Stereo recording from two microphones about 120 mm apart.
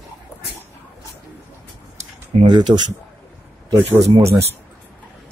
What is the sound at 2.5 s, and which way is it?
Speech, 35° right (ahead or behind).